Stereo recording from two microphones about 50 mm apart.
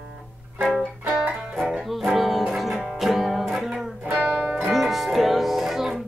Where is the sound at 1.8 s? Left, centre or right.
Centre.